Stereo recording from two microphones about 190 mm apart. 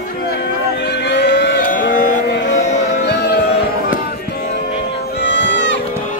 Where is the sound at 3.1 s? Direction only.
65° left (ahead or behind).